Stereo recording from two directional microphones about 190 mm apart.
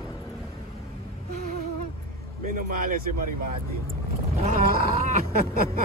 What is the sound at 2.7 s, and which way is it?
Speech, 45° right (ahead or behind).